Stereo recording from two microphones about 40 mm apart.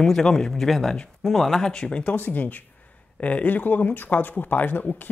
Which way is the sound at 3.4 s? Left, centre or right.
Left.